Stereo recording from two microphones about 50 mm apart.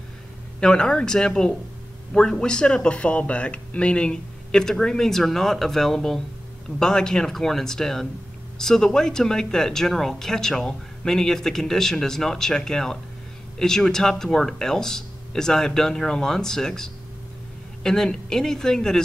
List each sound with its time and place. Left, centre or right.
0.6 s speech: centre